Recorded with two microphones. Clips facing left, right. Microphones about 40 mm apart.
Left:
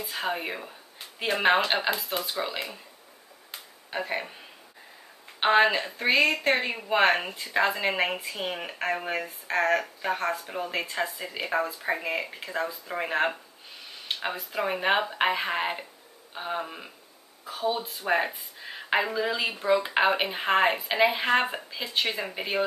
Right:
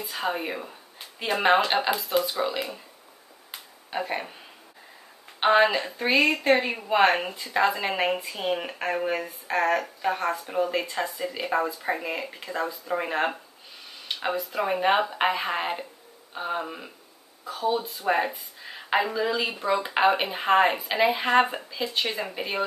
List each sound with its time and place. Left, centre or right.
0.1 s speech: centre
4.0 s speech: centre
5.4 s a woman's voice: centre
17.5 s a woman's voice: centre
18.0 s a woman's voice: centre